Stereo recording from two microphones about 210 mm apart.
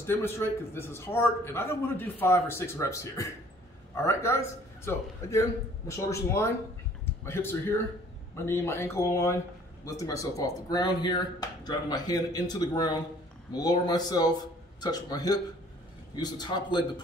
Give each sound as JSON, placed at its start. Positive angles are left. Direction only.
{"t": 0.0, "sound": "a man's voice", "side_deg": 10}